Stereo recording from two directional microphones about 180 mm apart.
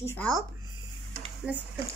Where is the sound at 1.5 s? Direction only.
10° right (ahead or behind).